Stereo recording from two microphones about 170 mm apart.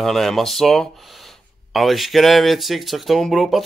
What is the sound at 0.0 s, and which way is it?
Speech, centre (ahead or behind).